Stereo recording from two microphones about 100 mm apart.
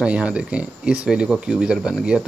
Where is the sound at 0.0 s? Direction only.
10° right (ahead or behind).